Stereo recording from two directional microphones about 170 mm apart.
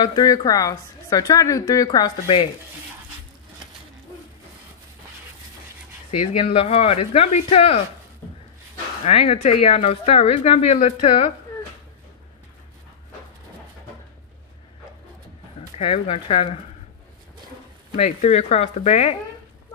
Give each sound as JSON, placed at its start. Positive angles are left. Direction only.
{"t": 0.0, "sound": "a woman's voice", "side_deg": 25}
{"t": 6.1, "sound": "speech", "side_deg": 35}
{"t": 9.0, "sound": "speech", "side_deg": 35}
{"t": 15.8, "sound": "speech", "side_deg": 35}
{"t": 17.9, "sound": "speech", "side_deg": 40}